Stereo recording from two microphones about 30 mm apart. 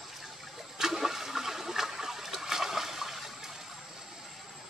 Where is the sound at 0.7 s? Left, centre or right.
Centre.